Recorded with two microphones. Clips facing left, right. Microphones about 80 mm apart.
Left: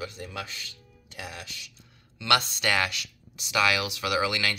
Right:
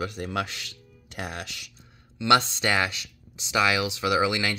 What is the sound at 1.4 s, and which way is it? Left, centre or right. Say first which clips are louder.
Speech: right 4 dB; right.